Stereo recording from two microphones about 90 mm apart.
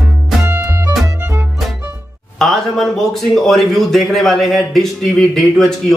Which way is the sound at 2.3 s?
Centre (ahead or behind).